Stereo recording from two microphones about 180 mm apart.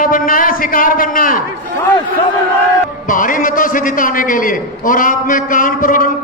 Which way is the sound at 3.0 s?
50° left (ahead or behind).